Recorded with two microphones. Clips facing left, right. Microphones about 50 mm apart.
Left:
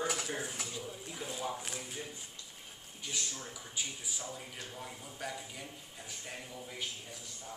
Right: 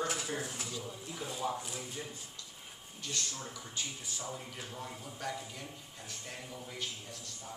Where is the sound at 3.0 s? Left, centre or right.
Centre.